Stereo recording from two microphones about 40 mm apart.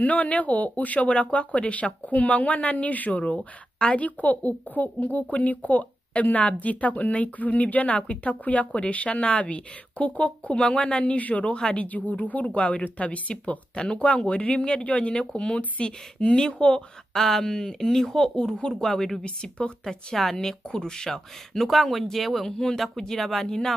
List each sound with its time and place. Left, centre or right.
0.0 s speech: left
10.5 s speech: left
11.1 s speech: left
15.1 s speech: left
15.5 s speech: left
17.1 s speech: centre
18.9 s speech: centre
19.2 s speech: left
19.8 s speech: centre